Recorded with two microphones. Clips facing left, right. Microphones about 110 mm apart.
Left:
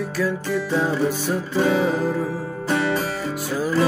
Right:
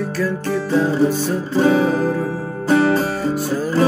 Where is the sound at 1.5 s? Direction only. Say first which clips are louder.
Right 5 dB; 35° right (ahead or behind).